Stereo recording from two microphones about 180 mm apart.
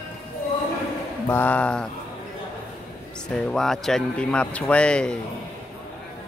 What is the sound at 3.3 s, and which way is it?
Speech, centre (ahead or behind).